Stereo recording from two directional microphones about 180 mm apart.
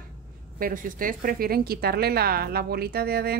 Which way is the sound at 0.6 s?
50° right (ahead or behind).